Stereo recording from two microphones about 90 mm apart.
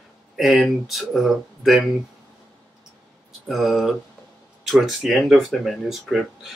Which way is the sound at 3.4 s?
Centre (ahead or behind).